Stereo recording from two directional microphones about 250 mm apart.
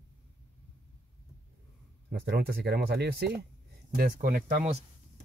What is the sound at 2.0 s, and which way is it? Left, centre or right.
Speech, right.